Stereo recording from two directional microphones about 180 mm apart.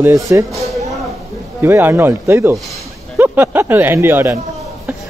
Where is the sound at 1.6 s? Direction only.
15° right (ahead or behind).